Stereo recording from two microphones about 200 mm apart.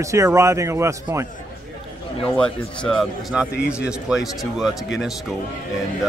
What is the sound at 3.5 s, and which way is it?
Speech, 55° left (ahead or behind).